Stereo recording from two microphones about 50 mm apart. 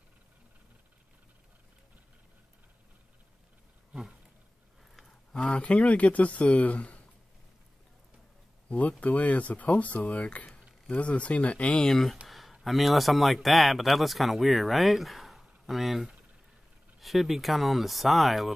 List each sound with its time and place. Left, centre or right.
5.3 s speech: left
8.6 s speech: left
11.8 s speech: centre
12.3 s a sound: centre
12.6 s speech: centre